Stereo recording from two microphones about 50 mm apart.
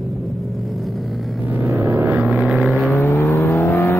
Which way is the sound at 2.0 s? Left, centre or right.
Right.